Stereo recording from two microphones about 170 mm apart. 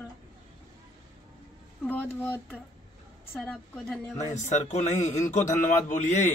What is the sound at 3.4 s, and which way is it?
Speech, 5° left (ahead or behind).